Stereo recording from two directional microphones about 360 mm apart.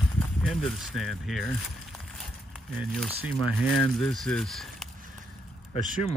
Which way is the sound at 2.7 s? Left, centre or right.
Centre.